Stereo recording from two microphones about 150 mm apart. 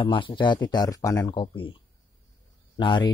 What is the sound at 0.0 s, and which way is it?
A man's voice, 35° left (ahead or behind).